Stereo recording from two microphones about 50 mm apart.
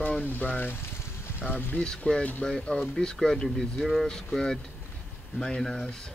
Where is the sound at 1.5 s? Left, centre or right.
Left.